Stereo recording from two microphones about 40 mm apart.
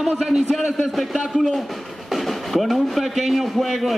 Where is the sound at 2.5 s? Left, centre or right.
Centre.